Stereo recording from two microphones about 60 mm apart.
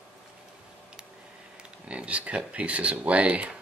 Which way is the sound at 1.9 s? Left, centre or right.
Right.